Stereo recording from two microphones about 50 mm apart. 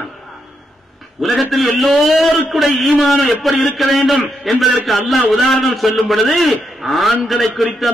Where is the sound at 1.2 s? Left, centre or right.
Centre.